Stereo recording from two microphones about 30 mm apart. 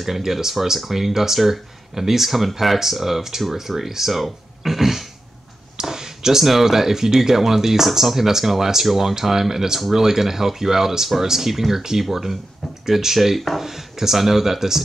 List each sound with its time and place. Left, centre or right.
0.0 s speech: centre
5.8 s a sound: centre
6.4 s speech: centre